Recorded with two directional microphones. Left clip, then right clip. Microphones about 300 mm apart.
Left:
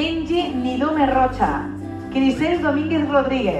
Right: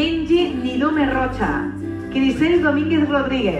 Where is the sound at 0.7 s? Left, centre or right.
Left.